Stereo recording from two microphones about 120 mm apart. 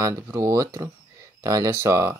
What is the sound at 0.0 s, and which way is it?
Speech, 25° right (ahead or behind).